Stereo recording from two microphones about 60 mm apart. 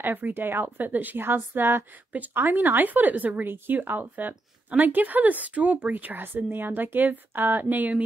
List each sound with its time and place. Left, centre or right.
0.0 s a woman's voice: right